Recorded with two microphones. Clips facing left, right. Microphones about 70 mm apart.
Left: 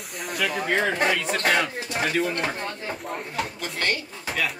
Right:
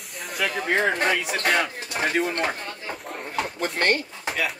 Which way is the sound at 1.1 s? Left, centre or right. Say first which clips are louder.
Even; centre.